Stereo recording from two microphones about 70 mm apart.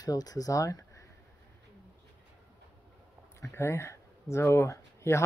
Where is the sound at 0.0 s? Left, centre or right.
Left.